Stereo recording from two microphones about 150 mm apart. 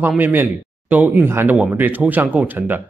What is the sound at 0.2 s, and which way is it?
Speech, 10° right (ahead or behind).